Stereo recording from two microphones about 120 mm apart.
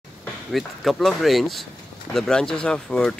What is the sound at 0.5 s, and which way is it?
A man's voice, centre (ahead or behind).